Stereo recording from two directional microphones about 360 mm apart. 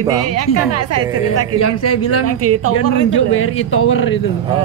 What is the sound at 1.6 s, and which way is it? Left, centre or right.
Speech, left.